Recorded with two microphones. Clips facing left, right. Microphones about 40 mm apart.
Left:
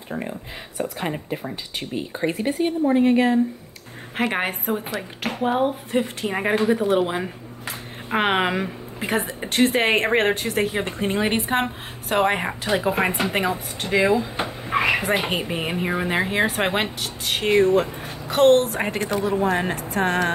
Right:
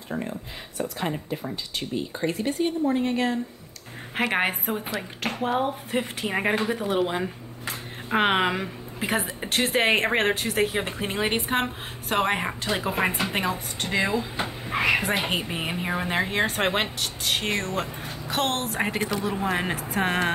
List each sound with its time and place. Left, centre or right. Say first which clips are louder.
0.1 s speech: left 1 dB; centre
0.7 s a woman's voice: left 2 dB; centre
4.2 s a woman's voice: left 1 dB; centre
5.9 s a woman's voice: left 4 dB; centre
14.4 s a sound: left 3 dB; centre
15.0 s speech: left 3 dB; centre
18.9 s a woman's voice: left 3 dB; left
19.3 s speech: left 5 dB; centre